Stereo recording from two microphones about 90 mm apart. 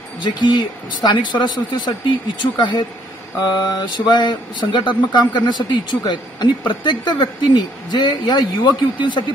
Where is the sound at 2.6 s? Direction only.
55° left (ahead or behind).